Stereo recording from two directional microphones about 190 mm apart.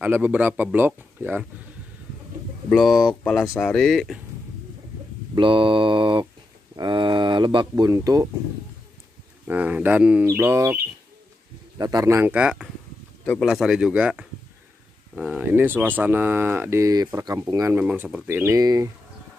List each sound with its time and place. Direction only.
0.0 s speech: 10° right (ahead or behind)
2.7 s speech: centre (ahead or behind)
5.3 s mantra: 25° right (ahead or behind)
6.8 s speech: 25° right (ahead or behind)
9.5 s speech: 10° right (ahead or behind)
11.8 s speech: 20° right (ahead or behind)